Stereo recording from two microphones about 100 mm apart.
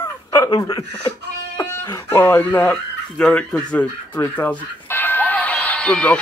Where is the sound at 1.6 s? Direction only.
20° left (ahead or behind).